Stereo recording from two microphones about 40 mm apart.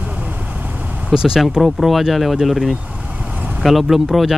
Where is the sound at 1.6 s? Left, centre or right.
Centre.